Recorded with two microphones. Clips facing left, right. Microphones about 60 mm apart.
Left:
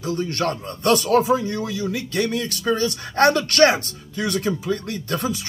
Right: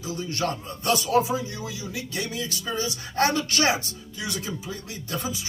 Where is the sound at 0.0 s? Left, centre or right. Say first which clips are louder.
Left 5 dB; left.